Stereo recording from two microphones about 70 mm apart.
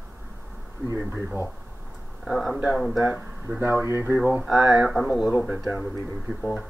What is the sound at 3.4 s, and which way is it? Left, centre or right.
Speech, right.